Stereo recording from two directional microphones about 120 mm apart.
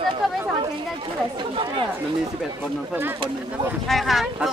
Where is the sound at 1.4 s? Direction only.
45° right (ahead or behind).